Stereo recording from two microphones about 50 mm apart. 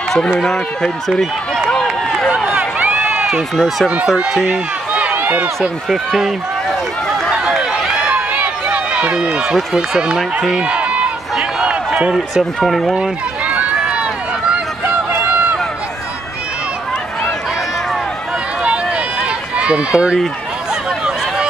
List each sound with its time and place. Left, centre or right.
0.4 s speech: centre
1.7 s run: centre
2.5 s run: right
3.5 s speech: centre
4.5 s run: right
5.3 s speech: right
5.9 s speech: centre
8.1 s run: right
9.8 s speech: centre
10.6 s run: right
11.3 s a sound: centre
12.0 s speech: centre
12.6 s speech: centre
19.5 s speech: right